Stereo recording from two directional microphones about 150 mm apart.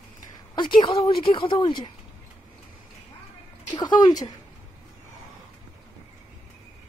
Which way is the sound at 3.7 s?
30° left (ahead or behind).